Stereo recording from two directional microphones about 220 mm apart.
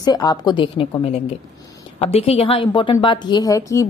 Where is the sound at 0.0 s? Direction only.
15° left (ahead or behind).